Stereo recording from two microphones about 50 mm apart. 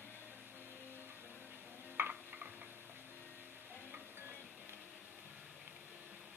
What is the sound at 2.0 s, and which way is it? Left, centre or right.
Stir, right.